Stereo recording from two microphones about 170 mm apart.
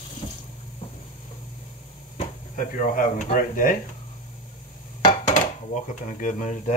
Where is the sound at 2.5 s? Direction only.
50° left (ahead or behind).